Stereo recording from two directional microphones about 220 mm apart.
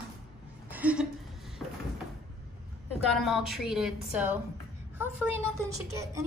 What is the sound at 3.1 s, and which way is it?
A woman's voice, centre (ahead or behind).